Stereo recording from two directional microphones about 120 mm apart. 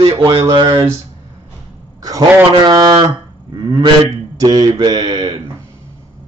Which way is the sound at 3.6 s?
40° right (ahead or behind).